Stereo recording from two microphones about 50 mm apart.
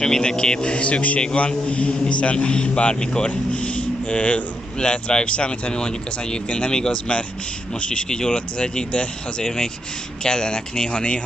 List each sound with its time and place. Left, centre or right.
0.0 s a man's voice: centre